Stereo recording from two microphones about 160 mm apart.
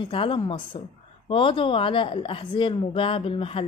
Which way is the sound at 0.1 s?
35° left (ahead or behind).